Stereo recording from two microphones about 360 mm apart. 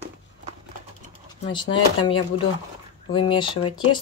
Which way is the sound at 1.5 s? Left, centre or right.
Centre.